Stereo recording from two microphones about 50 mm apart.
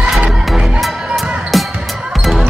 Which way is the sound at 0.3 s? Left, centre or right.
Centre.